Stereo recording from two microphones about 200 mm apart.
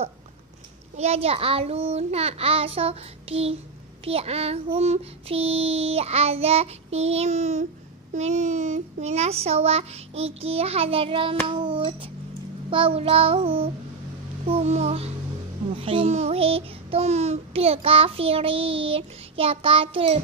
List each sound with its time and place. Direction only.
0.9 s child singing: 30° right (ahead or behind)